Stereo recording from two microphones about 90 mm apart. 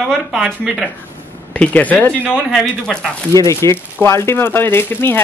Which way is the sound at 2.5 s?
5° left (ahead or behind).